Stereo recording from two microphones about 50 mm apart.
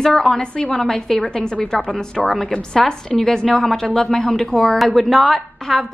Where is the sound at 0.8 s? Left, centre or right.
Centre.